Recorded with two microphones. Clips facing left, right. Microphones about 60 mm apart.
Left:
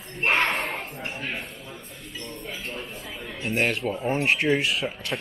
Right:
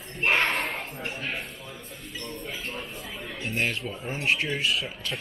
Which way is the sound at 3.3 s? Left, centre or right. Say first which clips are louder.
Left 4 dB; left.